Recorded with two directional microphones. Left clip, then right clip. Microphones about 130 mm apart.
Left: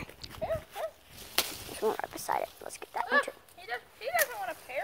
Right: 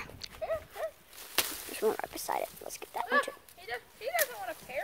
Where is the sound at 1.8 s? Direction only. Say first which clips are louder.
Even; 30° right (ahead or behind).